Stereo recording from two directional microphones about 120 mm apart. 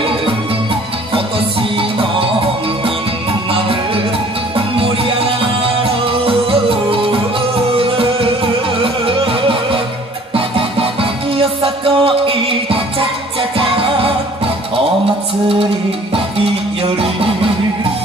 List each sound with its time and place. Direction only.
1.1 s music: 50° right (ahead or behind)
4.6 s music: 50° right (ahead or behind)